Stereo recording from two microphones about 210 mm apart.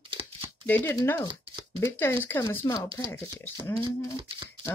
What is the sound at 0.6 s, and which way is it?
Speech, 10° left (ahead or behind).